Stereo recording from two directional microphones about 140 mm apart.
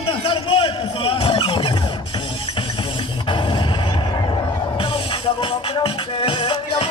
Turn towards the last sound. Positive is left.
turn(degrees=35)  # may be behind; listen again after turning